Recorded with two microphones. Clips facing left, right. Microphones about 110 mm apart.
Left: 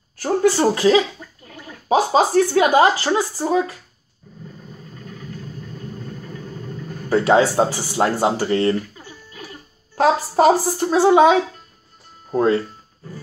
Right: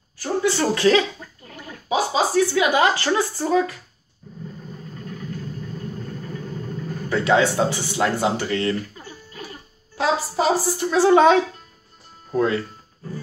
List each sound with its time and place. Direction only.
0.4 s speech: 35° left (ahead or behind)
1.9 s a woman's voice: 50° left (ahead or behind)
2.8 s speech: 20° left (ahead or behind)
5.9 s vehicle: centre (ahead or behind)
7.1 s speech: 35° left (ahead or behind)
9.9 s a woman's voice: 55° left (ahead or behind)
10.9 s speech: 25° left (ahead or behind)
11.1 s speech: 10° left (ahead or behind)
12.3 s speech: 30° left (ahead or behind)